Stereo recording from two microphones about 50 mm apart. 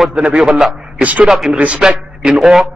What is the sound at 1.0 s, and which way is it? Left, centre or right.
Speech, right.